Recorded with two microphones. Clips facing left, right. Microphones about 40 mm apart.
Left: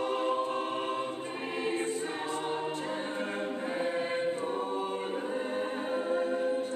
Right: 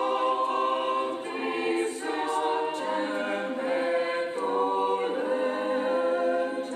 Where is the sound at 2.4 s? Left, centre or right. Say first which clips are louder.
Right 6 dB; centre.